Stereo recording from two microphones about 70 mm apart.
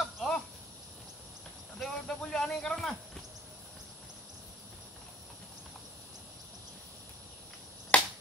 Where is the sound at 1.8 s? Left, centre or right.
Centre.